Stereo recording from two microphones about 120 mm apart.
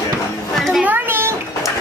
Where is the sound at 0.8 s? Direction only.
15° right (ahead or behind).